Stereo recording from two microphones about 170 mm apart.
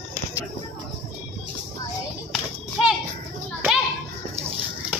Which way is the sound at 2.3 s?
Centre (ahead or behind).